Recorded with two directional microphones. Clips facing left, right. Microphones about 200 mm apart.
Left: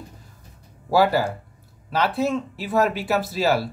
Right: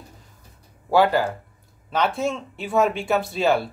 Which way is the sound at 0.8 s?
10° left (ahead or behind).